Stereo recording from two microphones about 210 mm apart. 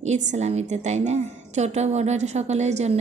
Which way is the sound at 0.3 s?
30° right (ahead or behind).